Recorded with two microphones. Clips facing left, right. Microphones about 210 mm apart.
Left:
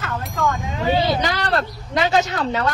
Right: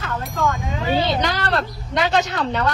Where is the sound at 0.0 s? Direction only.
Centre (ahead or behind).